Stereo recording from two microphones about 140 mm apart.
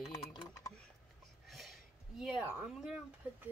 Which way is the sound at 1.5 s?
Centre (ahead or behind).